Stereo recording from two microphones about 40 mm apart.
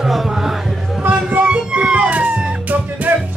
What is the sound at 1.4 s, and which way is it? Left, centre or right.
Music, right.